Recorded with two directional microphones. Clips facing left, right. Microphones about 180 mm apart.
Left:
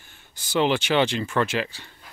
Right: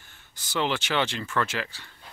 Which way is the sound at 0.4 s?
15° left (ahead or behind).